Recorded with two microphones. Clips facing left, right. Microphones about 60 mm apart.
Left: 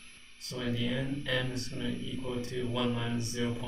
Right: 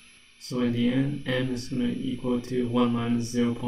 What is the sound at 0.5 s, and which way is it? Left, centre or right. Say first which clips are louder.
Speech: right 9 dB; right.